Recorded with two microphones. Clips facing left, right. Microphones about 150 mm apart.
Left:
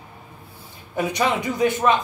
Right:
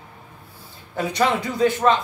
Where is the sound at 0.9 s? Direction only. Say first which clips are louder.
Right 1 dB; 15° left (ahead or behind).